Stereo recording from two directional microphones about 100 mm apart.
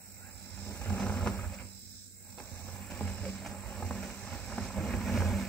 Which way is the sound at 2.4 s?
10° left (ahead or behind).